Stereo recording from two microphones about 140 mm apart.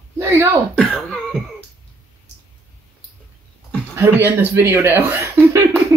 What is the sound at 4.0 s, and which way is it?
Speech, 15° right (ahead or behind).